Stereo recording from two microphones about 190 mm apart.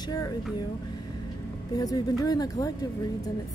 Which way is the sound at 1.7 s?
20° left (ahead or behind).